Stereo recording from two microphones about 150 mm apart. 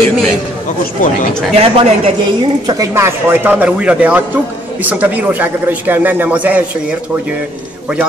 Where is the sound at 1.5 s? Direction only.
40° right (ahead or behind).